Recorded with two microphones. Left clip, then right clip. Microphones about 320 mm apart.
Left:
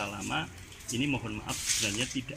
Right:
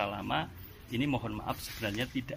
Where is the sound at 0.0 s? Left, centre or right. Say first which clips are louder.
Right 1 dB; centre.